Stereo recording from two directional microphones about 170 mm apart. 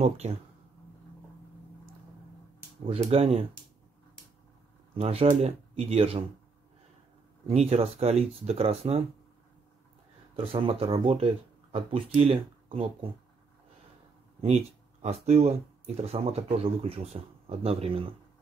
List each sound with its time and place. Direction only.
3.1 s speech: 35° right (ahead or behind)
4.9 s speech: 35° right (ahead or behind)
7.4 s speech: 40° right (ahead or behind)
10.3 s speech: 35° right (ahead or behind)
14.4 s speech: 40° right (ahead or behind)